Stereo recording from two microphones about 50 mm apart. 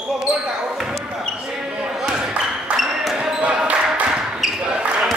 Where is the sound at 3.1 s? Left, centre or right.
Centre.